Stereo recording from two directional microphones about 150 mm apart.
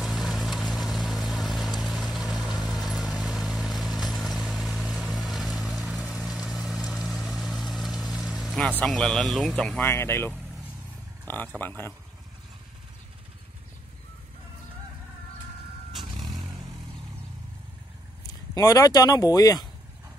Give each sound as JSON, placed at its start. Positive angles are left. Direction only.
{"t": 0.0, "sound": "vehicle", "side_deg": 0}
{"t": 8.8, "sound": "speech", "side_deg": 5}
{"t": 9.8, "sound": "speech", "side_deg": 15}
{"t": 16.3, "sound": "vehicle", "side_deg": -25}
{"t": 18.2, "sound": "speech", "side_deg": 25}